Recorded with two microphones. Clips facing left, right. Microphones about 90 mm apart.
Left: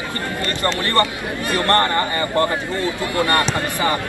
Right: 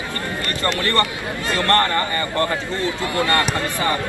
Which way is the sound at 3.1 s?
20° left (ahead or behind).